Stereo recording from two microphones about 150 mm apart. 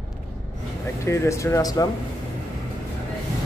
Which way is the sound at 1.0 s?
20° left (ahead or behind).